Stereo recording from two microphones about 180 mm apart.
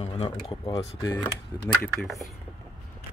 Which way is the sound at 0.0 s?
30° left (ahead or behind).